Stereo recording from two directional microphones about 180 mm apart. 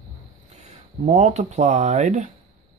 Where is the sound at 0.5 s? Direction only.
40° right (ahead or behind).